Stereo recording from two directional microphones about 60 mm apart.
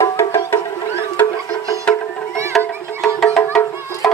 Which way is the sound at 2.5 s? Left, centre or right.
Centre.